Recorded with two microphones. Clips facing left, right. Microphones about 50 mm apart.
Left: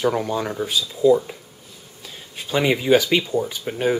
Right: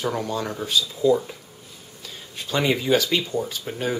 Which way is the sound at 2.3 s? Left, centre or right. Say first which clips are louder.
Left 2 dB; centre.